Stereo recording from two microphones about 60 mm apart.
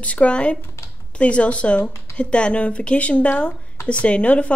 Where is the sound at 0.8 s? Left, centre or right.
Left.